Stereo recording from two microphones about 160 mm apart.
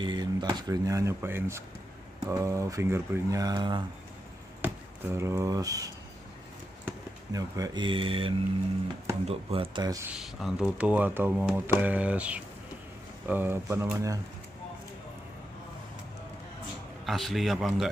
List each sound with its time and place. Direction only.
0.0 s speech: 25° right (ahead or behind)
4.6 s speech: 15° right (ahead or behind)
7.3 s speech: 25° right (ahead or behind)
10.1 s speech: 5° right (ahead or behind); by 14.2 s 20° right (ahead or behind)
17.0 s speech: centre (ahead or behind)